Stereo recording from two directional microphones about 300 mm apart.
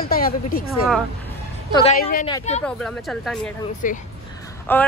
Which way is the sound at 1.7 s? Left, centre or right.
Left.